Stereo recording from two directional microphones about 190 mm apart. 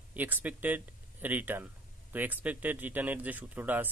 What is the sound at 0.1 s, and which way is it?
Speech, 10° right (ahead or behind).